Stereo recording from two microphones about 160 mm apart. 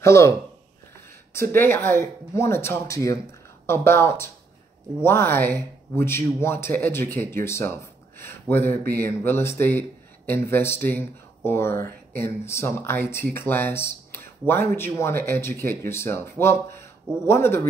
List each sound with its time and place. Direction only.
0.0 s a man's voice: 15° left (ahead or behind)
1.3 s speech: 15° left (ahead or behind)